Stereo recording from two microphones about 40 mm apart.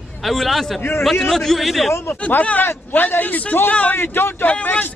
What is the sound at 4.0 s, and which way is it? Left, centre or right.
Speech, left.